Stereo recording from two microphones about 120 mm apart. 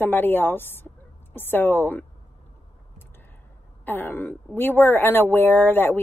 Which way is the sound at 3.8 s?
15° left (ahead or behind).